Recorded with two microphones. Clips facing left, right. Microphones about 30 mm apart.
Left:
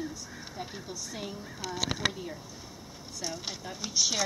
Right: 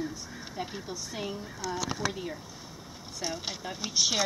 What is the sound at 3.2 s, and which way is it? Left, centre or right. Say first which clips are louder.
A woman's voice: right 2 dB; centre.